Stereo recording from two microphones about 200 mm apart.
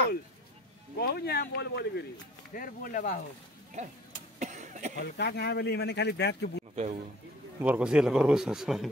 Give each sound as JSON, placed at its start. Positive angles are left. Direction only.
{"t": 0.9, "sound": "speech", "side_deg": 55}
{"t": 2.5, "sound": "speech", "side_deg": 45}
{"t": 3.8, "sound": "a man's voice", "side_deg": -35}
{"t": 4.4, "sound": "cough", "side_deg": -35}
{"t": 4.9, "sound": "speech", "side_deg": 55}
{"t": 6.7, "sound": "a man's voice", "side_deg": -35}
{"t": 7.6, "sound": "speech", "side_deg": -5}